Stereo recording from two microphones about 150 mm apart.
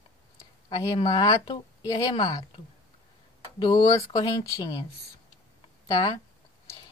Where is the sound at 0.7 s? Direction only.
30° left (ahead or behind).